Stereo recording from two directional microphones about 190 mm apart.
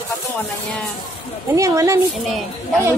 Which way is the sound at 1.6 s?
15° right (ahead or behind).